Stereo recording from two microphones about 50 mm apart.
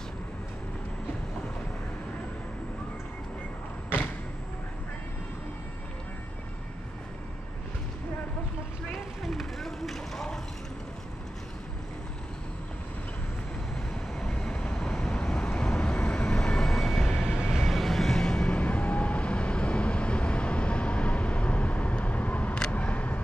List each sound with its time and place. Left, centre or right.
9.2 s vehicle: centre
14.2 s vehicle: centre
17.5 s vehicle: centre
18.5 s vehicle: left
22.7 s a sound: left